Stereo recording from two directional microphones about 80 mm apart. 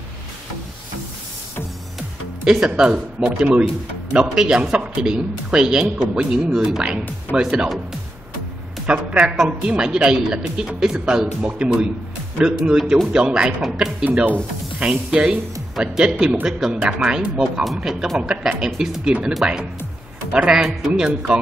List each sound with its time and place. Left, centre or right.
2.4 s a woman's voice: centre
8.8 s a woman's voice: centre
14.2 s a woman's voice: centre
20.3 s a woman's voice: centre